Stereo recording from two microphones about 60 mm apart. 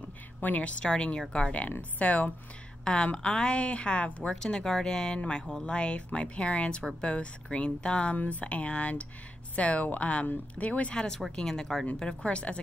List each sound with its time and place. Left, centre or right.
0.4 s speech: left